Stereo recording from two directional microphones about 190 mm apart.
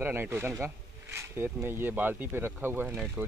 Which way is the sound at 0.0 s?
10° right (ahead or behind).